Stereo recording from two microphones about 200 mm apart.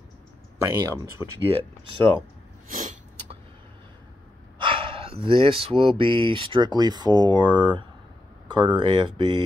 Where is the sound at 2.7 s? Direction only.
35° right (ahead or behind).